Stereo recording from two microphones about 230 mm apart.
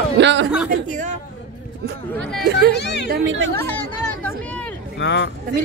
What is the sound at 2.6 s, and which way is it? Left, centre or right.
Speech, left.